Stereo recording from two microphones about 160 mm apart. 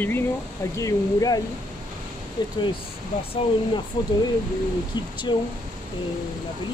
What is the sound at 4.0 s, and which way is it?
Speech, 25° left (ahead or behind).